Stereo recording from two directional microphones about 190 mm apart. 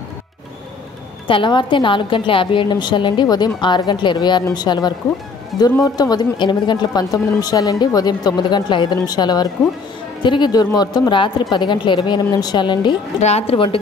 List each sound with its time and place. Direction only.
1.2 s speech: 25° left (ahead or behind)